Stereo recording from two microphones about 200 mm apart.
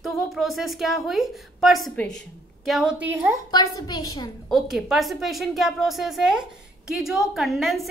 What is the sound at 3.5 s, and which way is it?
Speech, 20° left (ahead or behind).